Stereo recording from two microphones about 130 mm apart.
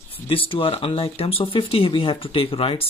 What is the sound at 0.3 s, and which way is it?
Speech, 45° left (ahead or behind).